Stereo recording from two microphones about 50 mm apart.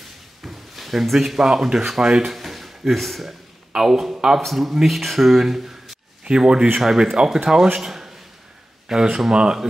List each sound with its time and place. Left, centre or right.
0.4 s speech: centre
2.3 s a sound: centre
4.4 s speech: centre
6.2 s speech: centre